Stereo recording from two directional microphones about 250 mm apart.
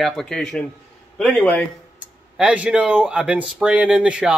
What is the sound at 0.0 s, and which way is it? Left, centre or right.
Speech, centre.